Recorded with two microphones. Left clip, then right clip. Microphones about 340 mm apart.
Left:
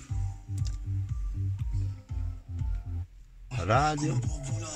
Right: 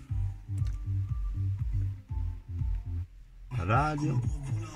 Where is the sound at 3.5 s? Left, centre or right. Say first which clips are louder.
Left 3 dB; centre.